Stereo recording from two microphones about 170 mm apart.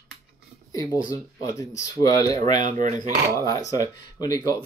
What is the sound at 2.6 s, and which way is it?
Speech, 45° right (ahead or behind).